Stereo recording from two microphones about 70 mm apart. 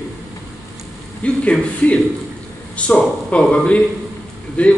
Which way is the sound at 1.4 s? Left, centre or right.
Centre.